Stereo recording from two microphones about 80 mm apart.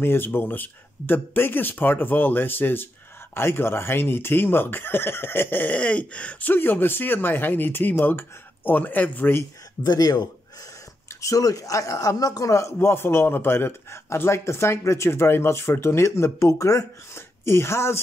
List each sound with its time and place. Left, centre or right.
0.0 s speech: left
6.5 s speech: left
9.8 s a man's voice: left
11.1 s speech: left
12.7 s a man's voice: left